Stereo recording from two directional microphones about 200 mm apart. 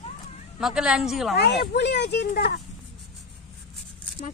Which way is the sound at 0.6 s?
5° right (ahead or behind).